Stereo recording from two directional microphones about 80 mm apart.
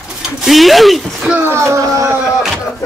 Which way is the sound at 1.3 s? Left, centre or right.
Right.